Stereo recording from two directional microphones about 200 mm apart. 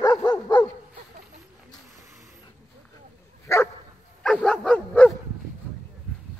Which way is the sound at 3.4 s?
15° left (ahead or behind).